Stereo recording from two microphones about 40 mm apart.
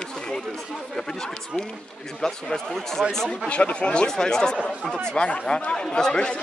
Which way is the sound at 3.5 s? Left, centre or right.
Left.